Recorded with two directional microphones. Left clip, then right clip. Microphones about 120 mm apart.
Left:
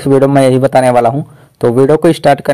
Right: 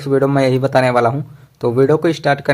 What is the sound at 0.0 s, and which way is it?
A man's voice, 30° left (ahead or behind).